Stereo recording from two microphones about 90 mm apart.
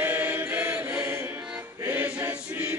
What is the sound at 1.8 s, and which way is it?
Chant, 20° right (ahead or behind).